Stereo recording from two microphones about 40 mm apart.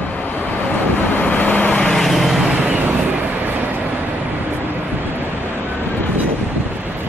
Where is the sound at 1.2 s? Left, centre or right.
Left.